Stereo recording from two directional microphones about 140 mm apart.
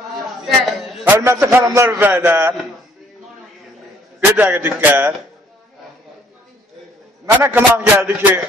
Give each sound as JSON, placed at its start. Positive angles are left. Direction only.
{"t": 1.0, "sound": "a man's voice", "side_deg": -20}
{"t": 4.2, "sound": "a man's voice", "side_deg": -15}
{"t": 7.2, "sound": "a man's voice", "side_deg": -15}